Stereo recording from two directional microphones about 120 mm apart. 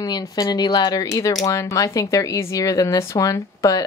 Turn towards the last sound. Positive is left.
turn(degrees=30)  # may be behind; listen again after turning